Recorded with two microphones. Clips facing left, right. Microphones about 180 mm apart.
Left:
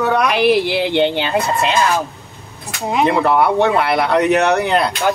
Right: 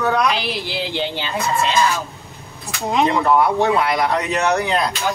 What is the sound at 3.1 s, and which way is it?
Speech, 65° left (ahead or behind).